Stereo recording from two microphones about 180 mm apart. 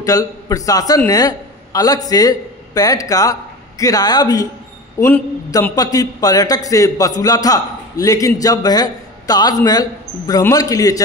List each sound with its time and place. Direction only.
0.0 s a man's voice: 20° left (ahead or behind)